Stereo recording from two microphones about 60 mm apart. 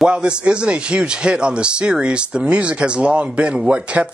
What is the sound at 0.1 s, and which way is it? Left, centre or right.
A man's voice, centre.